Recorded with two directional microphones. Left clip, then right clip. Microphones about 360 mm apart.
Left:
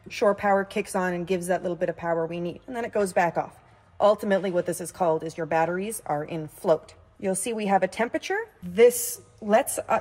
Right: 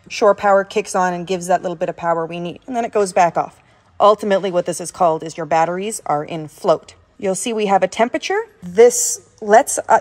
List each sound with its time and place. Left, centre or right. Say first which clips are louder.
0.1 s a woman's voice: right 9 dB; right